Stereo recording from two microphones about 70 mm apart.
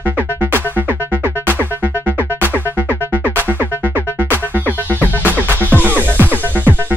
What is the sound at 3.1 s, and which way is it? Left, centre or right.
Music, right.